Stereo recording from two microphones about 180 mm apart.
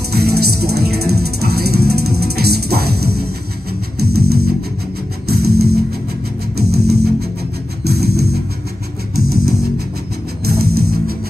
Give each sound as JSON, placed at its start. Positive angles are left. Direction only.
{"t": 0.1, "sound": "music", "side_deg": -60}